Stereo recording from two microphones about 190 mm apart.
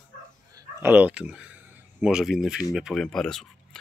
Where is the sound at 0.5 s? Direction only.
10° right (ahead or behind).